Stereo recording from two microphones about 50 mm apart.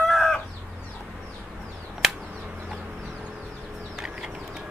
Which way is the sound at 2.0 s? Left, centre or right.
Centre.